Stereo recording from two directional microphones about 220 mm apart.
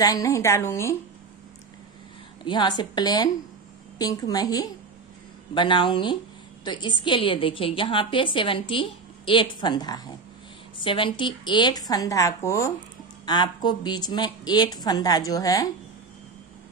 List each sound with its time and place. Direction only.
0.0 s a woman's voice: 15° left (ahead or behind)
2.4 s a woman's voice: 20° left (ahead or behind)